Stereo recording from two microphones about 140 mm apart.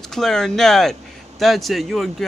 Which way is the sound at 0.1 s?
5° left (ahead or behind).